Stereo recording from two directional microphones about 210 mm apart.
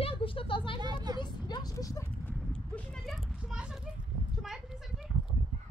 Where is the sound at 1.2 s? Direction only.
20° left (ahead or behind); by 4.9 s centre (ahead or behind).